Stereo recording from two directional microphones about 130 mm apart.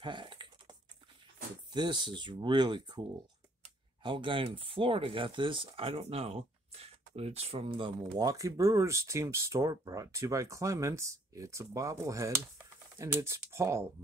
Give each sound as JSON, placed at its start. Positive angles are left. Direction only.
{"t": 0.0, "sound": "a sound", "side_deg": -40}
{"t": 1.7, "sound": "speech", "side_deg": -35}
{"t": 4.0, "sound": "speech", "side_deg": -40}
{"t": 8.0, "sound": "speech", "side_deg": -30}